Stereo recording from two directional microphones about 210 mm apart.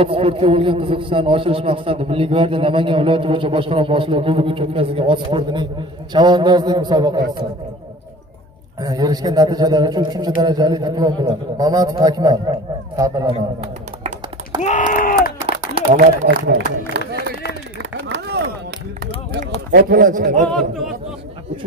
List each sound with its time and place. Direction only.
0.0 s a man's voice: 25° right (ahead or behind)
8.8 s a man's voice: 20° right (ahead or behind)
13.3 s a sound: 25° right (ahead or behind)
14.6 s a sound: 35° left (ahead or behind)
16.3 s a man's voice: 55° right (ahead or behind)
18.0 s chop: 55° right (ahead or behind)
19.7 s speech: 45° right (ahead or behind)
20.4 s speech: centre (ahead or behind)